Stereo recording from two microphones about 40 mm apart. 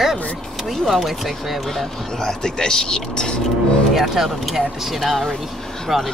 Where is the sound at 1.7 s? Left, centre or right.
Centre.